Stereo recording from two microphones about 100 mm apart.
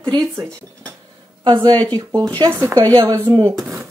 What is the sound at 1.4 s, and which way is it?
Speech, 50° right (ahead or behind).